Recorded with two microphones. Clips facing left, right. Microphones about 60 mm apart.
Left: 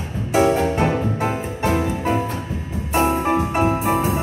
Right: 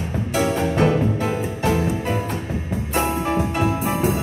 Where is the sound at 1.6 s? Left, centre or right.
Left.